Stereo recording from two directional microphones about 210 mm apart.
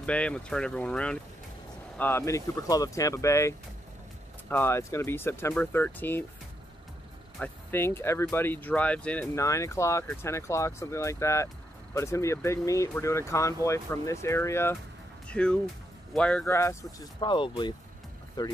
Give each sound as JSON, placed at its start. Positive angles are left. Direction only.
{"t": 0.0, "sound": "speech", "side_deg": 5}
{"t": 7.3, "sound": "speech", "side_deg": 10}